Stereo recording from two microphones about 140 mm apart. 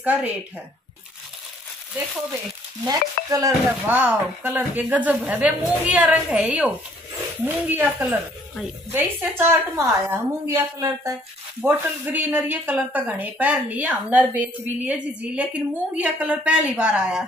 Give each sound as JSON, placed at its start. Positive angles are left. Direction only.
{"t": 0.0, "sound": "speech", "side_deg": -10}
{"t": 2.9, "sound": "stir", "side_deg": -25}
{"t": 3.8, "sound": "speech", "side_deg": -10}